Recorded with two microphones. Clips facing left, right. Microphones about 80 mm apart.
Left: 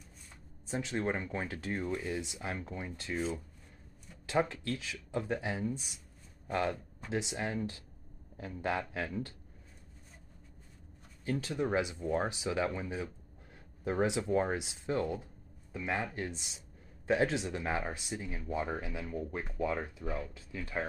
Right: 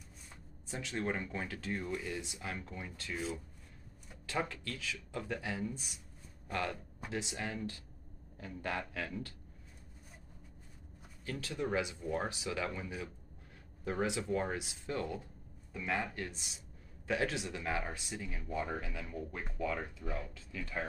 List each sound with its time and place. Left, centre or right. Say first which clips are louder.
0.7 s speech: left 4 dB; left
3.2 s speech: left 4 dB; centre
4.3 s speech: left 6 dB; left
11.2 s speech: left 4 dB; left